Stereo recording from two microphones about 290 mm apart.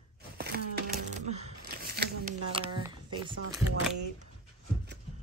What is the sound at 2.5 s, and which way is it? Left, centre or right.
Speech, centre.